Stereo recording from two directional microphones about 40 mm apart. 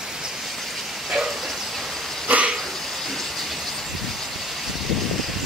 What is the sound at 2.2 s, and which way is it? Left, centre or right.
Dog, right.